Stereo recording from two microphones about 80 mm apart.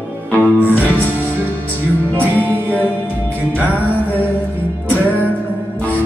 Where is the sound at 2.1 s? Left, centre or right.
Left.